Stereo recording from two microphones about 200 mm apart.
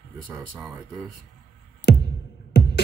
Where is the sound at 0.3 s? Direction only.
5° right (ahead or behind).